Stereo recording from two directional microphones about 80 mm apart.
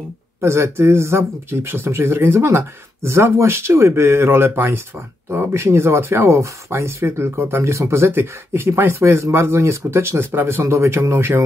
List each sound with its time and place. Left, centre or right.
0.4 s speech: right